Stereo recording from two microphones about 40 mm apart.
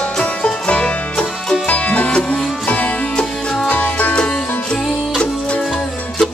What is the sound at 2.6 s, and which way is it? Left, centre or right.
Music, left.